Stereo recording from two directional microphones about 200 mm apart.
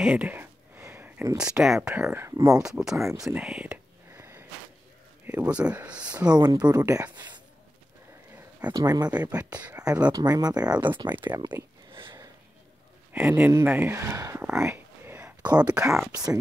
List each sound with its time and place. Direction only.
0.0 s speech: 5° right (ahead or behind)
2.6 s speech: 5° right (ahead or behind)
3.1 s a sound: 10° right (ahead or behind)
5.2 s speech: 5° right (ahead or behind)
6.2 s speech: 20° right (ahead or behind)
8.4 s a sound: 10° right (ahead or behind)
8.8 s speech: 20° right (ahead or behind)
9.1 s speech: 5° right (ahead or behind)
10.1 s speech: 20° right (ahead or behind)
13.1 s speech: 10° right (ahead or behind)
14.5 s a sound: 5° right (ahead or behind)
15.7 s speech: 5° right (ahead or behind)